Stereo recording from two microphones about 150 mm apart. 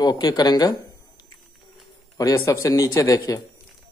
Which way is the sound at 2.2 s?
20° left (ahead or behind).